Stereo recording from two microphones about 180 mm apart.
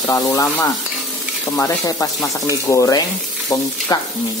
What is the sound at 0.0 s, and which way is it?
Frying, 20° left (ahead or behind).